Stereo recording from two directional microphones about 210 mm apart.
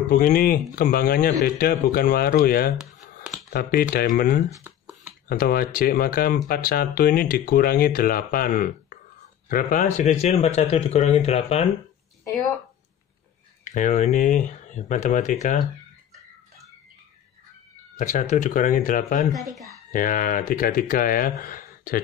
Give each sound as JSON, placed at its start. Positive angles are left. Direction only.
{"t": 0.1, "sound": "speech", "side_deg": 45}
{"t": 4.5, "sound": "a sound", "side_deg": -10}
{"t": 5.3, "sound": "speech", "side_deg": 45}
{"t": 13.7, "sound": "speech", "side_deg": 35}
{"t": 17.9, "sound": "speech", "side_deg": 35}
{"t": 19.3, "sound": "speech", "side_deg": 0}
{"t": 19.9, "sound": "speech", "side_deg": 40}